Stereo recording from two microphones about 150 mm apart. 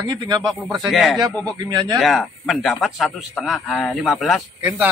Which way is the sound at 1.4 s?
25° right (ahead or behind).